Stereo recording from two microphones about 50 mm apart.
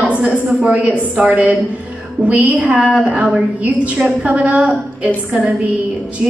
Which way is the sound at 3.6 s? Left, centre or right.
Right.